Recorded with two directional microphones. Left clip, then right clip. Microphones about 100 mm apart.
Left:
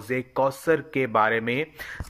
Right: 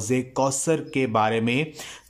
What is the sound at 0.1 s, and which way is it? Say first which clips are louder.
A man's voice: even; 25° right (ahead or behind).